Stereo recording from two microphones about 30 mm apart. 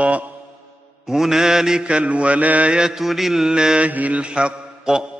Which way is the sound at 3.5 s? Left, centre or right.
Right.